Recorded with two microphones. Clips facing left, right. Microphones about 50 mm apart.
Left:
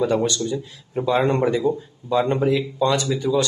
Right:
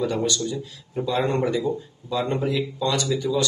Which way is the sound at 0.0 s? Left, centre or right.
Left.